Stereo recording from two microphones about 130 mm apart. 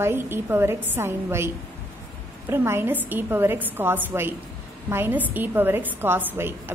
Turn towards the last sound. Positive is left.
turn(degrees=-15)  # may be behind; listen again after turning